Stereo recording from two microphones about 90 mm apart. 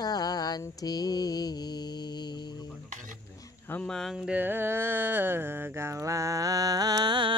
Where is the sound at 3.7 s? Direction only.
10° left (ahead or behind).